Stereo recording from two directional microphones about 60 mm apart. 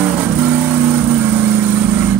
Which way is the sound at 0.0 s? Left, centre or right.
Right.